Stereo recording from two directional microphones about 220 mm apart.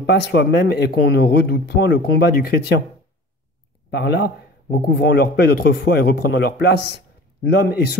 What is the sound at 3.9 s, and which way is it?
Speech, 50° left (ahead or behind).